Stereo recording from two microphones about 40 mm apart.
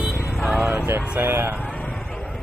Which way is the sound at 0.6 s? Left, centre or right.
Right.